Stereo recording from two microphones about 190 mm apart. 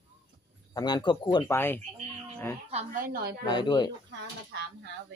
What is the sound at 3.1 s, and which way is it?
Speech, 50° right (ahead or behind).